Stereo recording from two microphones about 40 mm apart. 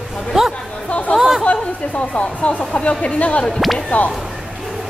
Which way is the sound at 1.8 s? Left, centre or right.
Left.